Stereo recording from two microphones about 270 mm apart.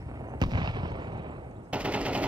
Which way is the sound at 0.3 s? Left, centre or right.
Centre.